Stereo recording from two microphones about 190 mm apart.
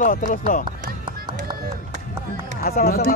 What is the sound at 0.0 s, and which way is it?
Speech, 45° left (ahead or behind).